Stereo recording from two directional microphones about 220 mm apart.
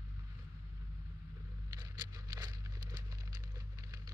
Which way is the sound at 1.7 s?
20° right (ahead or behind).